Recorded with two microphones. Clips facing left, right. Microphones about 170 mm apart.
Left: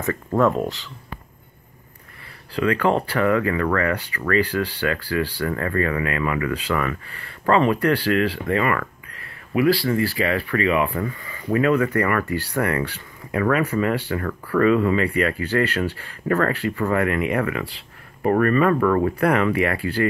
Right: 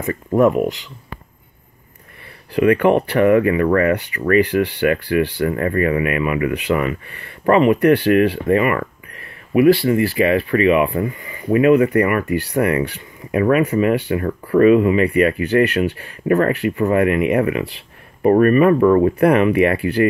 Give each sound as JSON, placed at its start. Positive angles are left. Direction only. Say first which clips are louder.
{"t": 0.0, "sound": "speech", "louder": "right 4 dB", "side_deg": -15}
{"t": 2.5, "sound": "speech", "louder": "right 6 dB", "side_deg": -20}